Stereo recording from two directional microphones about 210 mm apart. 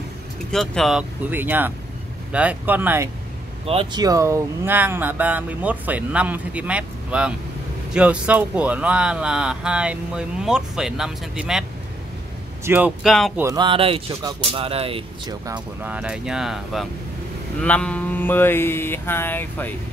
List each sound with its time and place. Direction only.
0.5 s speech: centre (ahead or behind)
3.6 s speech: 25° right (ahead or behind); by 11.6 s centre (ahead or behind)
12.6 s speech: 10° right (ahead or behind)
13.4 s speech: 20° right (ahead or behind)
15.5 s speech: 5° right (ahead or behind)
17.6 s mantra: 5° left (ahead or behind)